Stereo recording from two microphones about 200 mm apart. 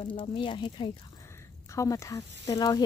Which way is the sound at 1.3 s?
15° left (ahead or behind).